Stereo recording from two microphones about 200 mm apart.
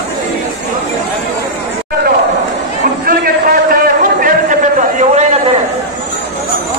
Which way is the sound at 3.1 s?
45° right (ahead or behind).